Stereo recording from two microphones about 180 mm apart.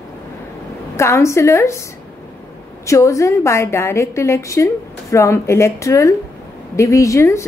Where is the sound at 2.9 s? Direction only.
15° left (ahead or behind).